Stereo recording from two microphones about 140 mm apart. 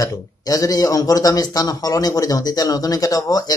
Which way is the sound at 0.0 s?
25° left (ahead or behind).